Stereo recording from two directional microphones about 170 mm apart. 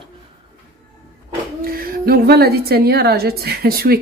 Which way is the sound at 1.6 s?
60° right (ahead or behind).